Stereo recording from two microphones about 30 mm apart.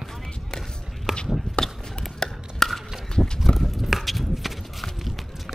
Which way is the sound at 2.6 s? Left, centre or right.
Centre.